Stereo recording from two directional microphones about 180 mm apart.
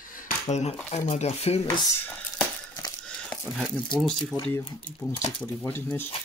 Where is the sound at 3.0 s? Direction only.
5° left (ahead or behind).